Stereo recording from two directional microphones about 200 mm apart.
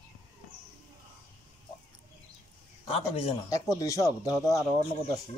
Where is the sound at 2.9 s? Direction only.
30° left (ahead or behind).